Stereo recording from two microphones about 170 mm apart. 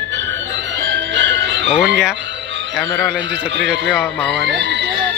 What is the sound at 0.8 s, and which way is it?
Music, 90° right.